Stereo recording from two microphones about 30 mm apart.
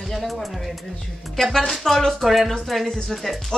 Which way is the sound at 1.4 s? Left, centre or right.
Centre.